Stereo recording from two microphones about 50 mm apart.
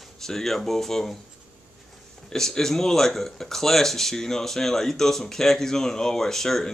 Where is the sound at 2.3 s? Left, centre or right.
Centre.